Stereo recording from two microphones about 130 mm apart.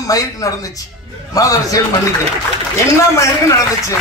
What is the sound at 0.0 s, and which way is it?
A man's voice, 25° left (ahead or behind).